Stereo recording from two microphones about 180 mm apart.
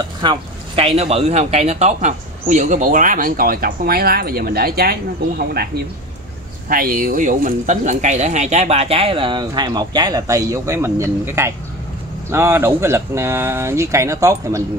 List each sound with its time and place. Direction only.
0.2 s speech: 30° right (ahead or behind)